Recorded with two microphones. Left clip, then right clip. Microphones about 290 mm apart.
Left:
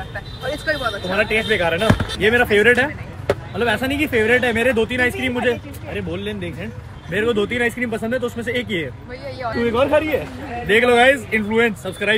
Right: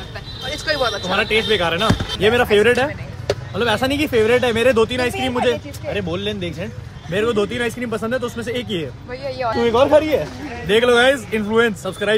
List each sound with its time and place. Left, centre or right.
0.7 s a sound: centre
1.0 s speech: centre
9.2 s speech: right